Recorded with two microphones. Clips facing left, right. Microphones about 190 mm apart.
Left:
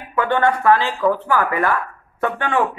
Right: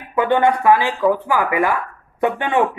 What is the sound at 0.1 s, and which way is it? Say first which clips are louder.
Speech: right 2 dB; 15° right (ahead or behind).